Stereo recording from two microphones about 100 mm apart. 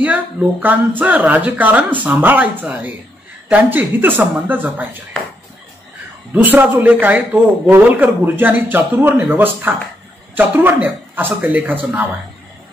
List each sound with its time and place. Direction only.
0.0 s speech: 15° right (ahead or behind)
6.3 s a man's voice: 15° right (ahead or behind)